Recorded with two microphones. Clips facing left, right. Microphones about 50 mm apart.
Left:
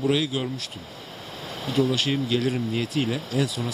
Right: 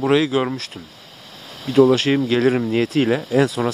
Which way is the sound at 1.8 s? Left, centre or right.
Right.